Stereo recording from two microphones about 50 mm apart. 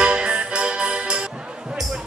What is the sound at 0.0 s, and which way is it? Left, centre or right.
Music, centre.